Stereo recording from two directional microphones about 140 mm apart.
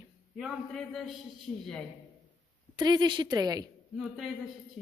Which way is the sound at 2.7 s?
30° right (ahead or behind).